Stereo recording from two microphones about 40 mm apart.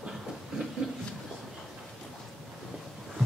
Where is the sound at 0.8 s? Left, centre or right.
Centre.